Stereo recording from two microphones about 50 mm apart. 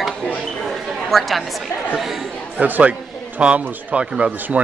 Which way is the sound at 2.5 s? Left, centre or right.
Right.